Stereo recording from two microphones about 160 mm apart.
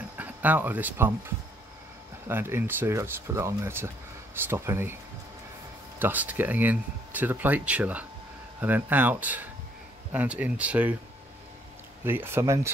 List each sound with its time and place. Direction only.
0.2 s speech: 10° right (ahead or behind)
5.9 s speech: 10° right (ahead or behind)
12.0 s speech: 15° right (ahead or behind)